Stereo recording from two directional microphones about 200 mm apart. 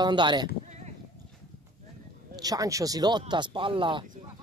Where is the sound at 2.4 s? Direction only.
20° right (ahead or behind).